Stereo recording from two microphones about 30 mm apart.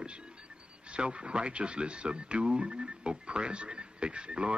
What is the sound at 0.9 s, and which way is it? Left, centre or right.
Speech, right.